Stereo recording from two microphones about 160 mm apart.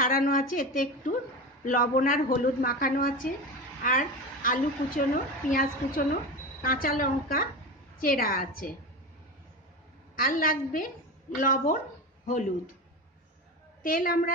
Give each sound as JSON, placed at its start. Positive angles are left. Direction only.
{"t": 0.1, "sound": "a woman's voice", "side_deg": 65}
{"t": 10.1, "sound": "a woman's voice", "side_deg": 60}
{"t": 13.8, "sound": "a woman's voice", "side_deg": 60}